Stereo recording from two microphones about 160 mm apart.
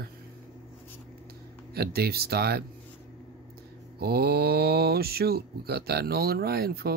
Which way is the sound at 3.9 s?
80° right.